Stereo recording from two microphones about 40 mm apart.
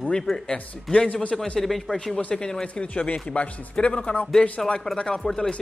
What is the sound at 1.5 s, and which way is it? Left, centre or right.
Speech, centre.